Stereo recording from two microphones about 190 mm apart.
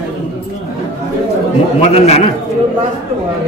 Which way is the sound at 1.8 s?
35° left (ahead or behind).